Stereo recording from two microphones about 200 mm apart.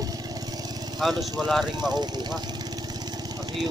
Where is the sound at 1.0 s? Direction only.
Centre (ahead or behind).